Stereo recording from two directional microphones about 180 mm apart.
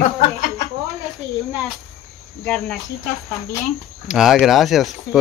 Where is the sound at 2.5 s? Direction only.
Centre (ahead or behind).